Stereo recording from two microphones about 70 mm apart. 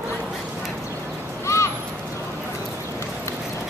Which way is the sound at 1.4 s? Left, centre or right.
Left.